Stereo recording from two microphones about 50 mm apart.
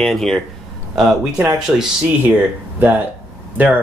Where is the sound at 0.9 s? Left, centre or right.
Centre.